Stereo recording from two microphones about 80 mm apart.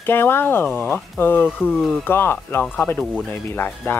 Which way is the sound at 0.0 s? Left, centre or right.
Left.